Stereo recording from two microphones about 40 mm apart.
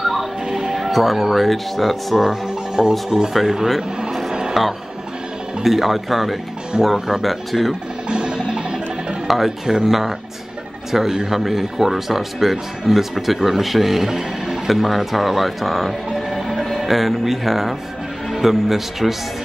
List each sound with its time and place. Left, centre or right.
0.0 s music: centre
2.1 s speech: centre
4.3 s a sound: right
5.6 s speech: centre
8.1 s music: right
9.3 s a man's voice: centre
14.7 s speech: centre
16.1 s music: centre
18.3 s speech: centre